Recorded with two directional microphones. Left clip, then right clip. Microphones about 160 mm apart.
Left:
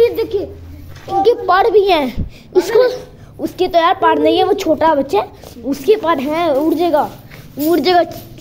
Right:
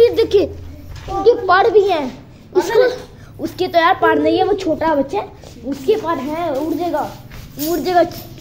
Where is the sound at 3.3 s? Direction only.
10° left (ahead or behind); by 7.0 s 50° left (ahead or behind).